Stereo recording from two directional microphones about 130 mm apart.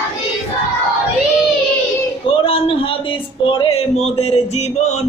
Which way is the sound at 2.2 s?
45° left (ahead or behind).